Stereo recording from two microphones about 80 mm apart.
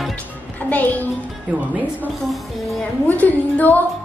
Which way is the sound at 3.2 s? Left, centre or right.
Left.